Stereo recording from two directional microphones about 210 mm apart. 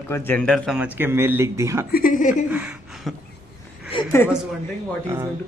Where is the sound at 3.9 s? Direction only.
25° left (ahead or behind).